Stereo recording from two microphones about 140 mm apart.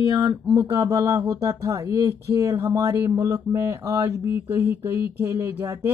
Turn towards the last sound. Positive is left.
turn(degrees=-20)  # may be behind; listen again after turning